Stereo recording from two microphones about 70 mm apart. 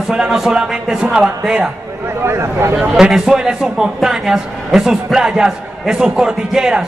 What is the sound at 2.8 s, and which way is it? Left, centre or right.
A man's voice, centre.